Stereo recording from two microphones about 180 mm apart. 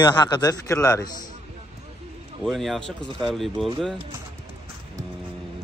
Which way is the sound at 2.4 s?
Centre (ahead or behind).